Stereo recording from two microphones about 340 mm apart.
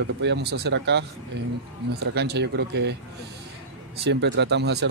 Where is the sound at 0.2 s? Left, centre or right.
Right.